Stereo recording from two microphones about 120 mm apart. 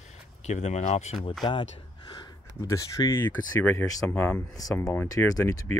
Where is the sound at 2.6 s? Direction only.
25° left (ahead or behind); by 4.4 s 10° left (ahead or behind).